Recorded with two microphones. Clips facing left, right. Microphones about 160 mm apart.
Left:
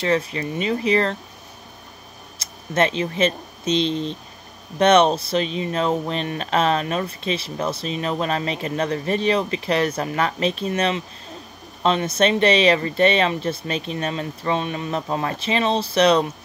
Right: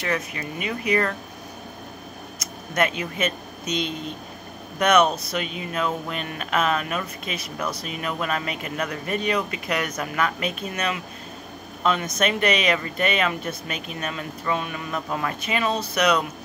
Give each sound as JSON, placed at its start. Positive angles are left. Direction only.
{"t": 0.0, "sound": "speech", "side_deg": 30}
{"t": 2.3, "sound": "speech", "side_deg": 30}